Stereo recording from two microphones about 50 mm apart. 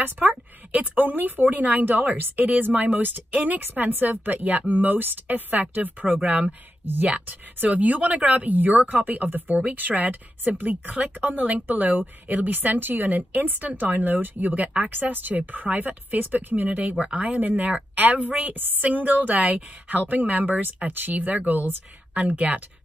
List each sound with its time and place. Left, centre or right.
0.7 s a woman's voice: right
17.4 s a woman's voice: right